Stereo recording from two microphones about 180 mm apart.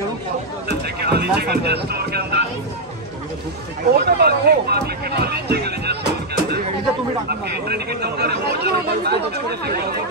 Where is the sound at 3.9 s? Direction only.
60° right (ahead or behind).